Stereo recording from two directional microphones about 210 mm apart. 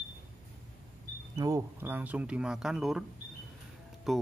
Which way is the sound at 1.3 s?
15° right (ahead or behind).